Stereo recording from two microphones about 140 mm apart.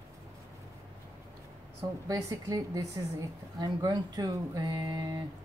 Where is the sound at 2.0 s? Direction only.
25° right (ahead or behind).